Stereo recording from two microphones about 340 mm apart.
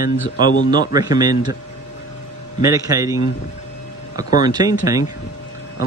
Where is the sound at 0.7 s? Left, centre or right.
Centre.